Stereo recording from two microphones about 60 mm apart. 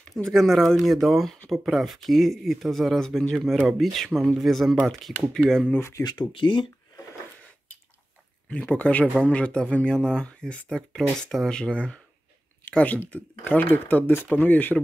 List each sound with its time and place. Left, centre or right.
0.3 s speech: centre
3.6 s speech: centre
3.9 s speech: centre
5.8 s speech: left
8.5 s speech: centre